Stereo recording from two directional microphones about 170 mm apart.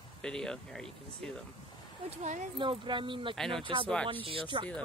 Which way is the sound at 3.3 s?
5° left (ahead or behind).